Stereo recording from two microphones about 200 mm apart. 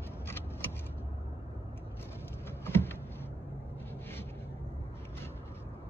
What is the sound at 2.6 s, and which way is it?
Power windows, 10° left (ahead or behind).